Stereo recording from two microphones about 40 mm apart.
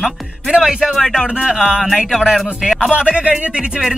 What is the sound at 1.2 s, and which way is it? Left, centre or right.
Speech, right.